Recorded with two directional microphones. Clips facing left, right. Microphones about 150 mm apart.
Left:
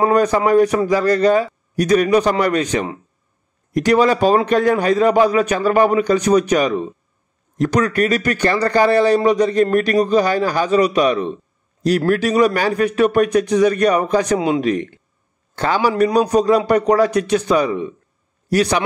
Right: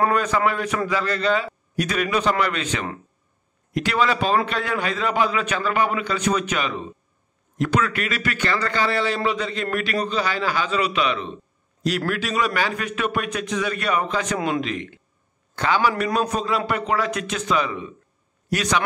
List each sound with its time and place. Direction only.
0.1 s a man's voice: 35° left (ahead or behind)